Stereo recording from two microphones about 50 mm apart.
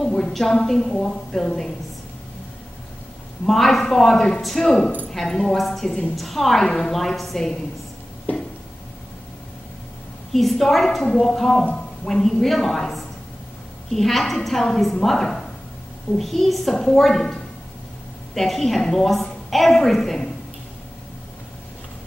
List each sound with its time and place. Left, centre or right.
0.2 s a woman's voice: centre
3.4 s a woman's voice: centre
10.3 s a woman's voice: centre
11.6 s a sound: centre
12.1 s a woman's voice: centre